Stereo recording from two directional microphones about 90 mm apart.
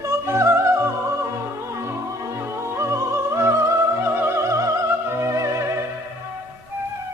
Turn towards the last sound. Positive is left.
turn(degrees=-35)  # may be behind; listen again after turning